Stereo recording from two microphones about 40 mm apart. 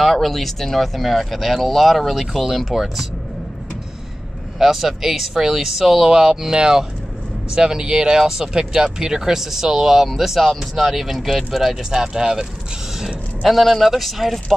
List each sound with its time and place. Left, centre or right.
0.0 s speech: centre
4.6 s speech: centre
13.0 s speech: centre